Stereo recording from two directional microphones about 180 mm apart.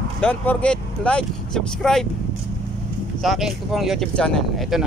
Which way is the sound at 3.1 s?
Centre (ahead or behind).